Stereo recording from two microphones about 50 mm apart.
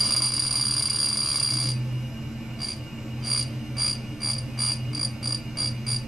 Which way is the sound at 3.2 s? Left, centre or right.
Centre.